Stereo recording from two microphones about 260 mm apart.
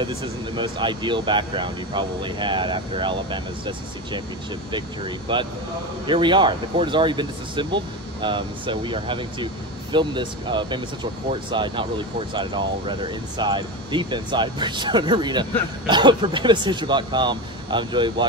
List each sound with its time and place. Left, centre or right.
0.6 s speech: centre